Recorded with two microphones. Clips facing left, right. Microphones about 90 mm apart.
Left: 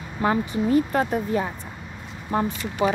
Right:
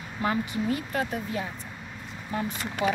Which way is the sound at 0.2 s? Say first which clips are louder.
Left 5 dB; 35° left (ahead or behind).